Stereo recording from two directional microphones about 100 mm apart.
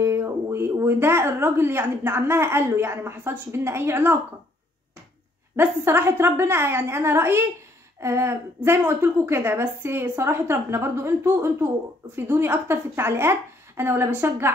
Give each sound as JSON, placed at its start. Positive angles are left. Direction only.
{"t": 0.0, "sound": "a woman's voice", "side_deg": -25}
{"t": 5.6, "sound": "a woman's voice", "side_deg": -25}